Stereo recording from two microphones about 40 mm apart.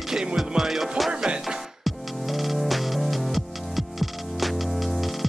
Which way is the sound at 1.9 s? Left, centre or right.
Centre.